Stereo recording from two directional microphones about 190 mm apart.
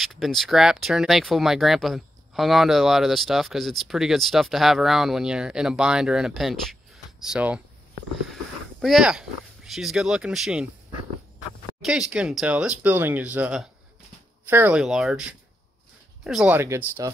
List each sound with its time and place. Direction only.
0.0 s speech: centre (ahead or behind)
8.8 s speech: centre (ahead or behind)
11.8 s speech: 5° right (ahead or behind)
16.5 s speech: 15° right (ahead or behind)